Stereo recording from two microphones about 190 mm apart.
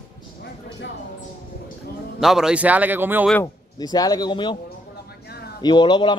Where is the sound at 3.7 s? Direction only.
20° left (ahead or behind).